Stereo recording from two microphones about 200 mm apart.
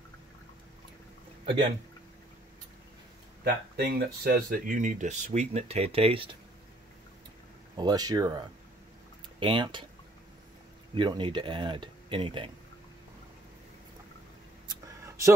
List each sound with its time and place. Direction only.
1.4 s speech: 25° right (ahead or behind)
3.4 s speech: 55° right (ahead or behind); by 6.3 s 30° right (ahead or behind)
7.7 s speech: 20° right (ahead or behind)
11.0 s speech: 25° right (ahead or behind)
14.7 s a sound: 15° right (ahead or behind)